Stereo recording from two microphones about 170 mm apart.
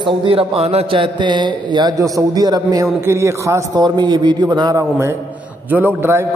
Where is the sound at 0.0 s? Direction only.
30° right (ahead or behind).